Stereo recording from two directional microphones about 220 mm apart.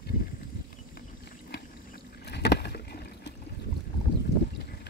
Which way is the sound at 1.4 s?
45° left (ahead or behind).